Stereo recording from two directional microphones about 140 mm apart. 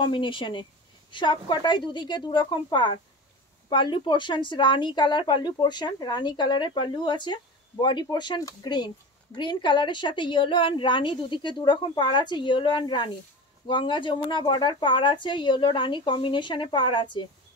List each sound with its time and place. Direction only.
0.0 s speech: 35° left (ahead or behind)